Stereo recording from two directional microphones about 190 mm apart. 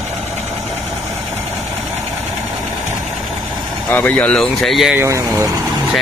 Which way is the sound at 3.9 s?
10° left (ahead or behind).